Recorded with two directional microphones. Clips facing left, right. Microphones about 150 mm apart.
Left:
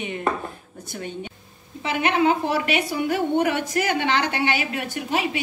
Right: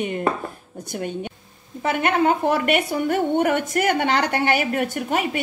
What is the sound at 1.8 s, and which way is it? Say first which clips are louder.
A woman's voice: right 1 dB; 50° right (ahead or behind).